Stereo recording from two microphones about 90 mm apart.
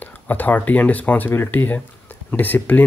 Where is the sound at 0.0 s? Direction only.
20° left (ahead or behind).